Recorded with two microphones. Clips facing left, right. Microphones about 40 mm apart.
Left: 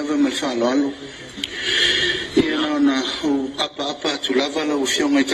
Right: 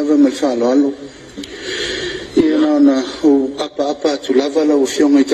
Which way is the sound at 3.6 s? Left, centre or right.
Left.